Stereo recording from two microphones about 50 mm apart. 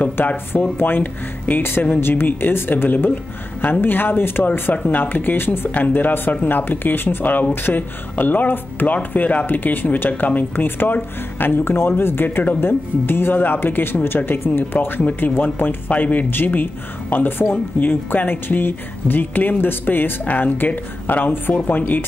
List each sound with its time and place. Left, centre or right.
0.0 s speech: left
0.5 s speech: left
16.3 s speech: left